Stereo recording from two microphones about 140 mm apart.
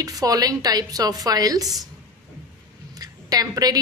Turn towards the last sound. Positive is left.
turn(degrees=-25)  # may be behind; listen again after turning